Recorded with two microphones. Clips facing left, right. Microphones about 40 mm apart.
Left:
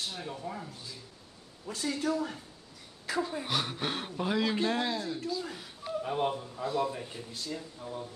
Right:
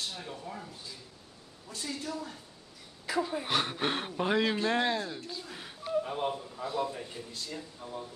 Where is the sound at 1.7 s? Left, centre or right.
Left.